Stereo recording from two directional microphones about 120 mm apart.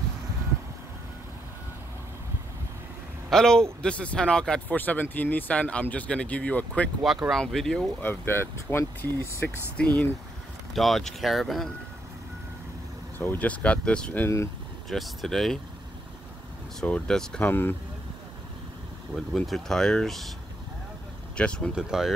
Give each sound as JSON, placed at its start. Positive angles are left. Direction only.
{"t": 3.3, "sound": "a man's voice", "side_deg": 5}
{"t": 7.0, "sound": "speech", "side_deg": 0}
{"t": 8.0, "sound": "speech", "side_deg": 15}
{"t": 9.8, "sound": "speech", "side_deg": 10}
{"t": 13.2, "sound": "speech", "side_deg": 15}
{"t": 14.2, "sound": "speech", "side_deg": 25}
{"t": 14.9, "sound": "speech", "side_deg": 0}
{"t": 16.8, "sound": "speech", "side_deg": 5}
{"t": 17.5, "sound": "speech", "side_deg": 20}
{"t": 19.1, "sound": "speech", "side_deg": 0}
{"t": 21.4, "sound": "speech", "side_deg": 10}
{"t": 21.7, "sound": "speech", "side_deg": -5}